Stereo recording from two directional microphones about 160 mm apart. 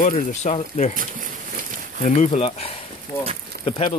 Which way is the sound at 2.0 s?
50° left (ahead or behind).